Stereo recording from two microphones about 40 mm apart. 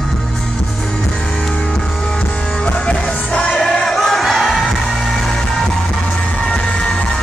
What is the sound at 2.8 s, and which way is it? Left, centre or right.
Music, left.